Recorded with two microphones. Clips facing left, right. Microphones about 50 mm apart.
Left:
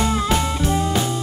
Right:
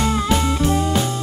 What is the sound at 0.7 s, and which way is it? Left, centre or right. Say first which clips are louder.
Music: right 1 dB; centre.